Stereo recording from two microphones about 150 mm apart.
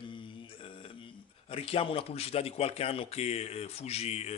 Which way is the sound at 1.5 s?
40° left (ahead or behind).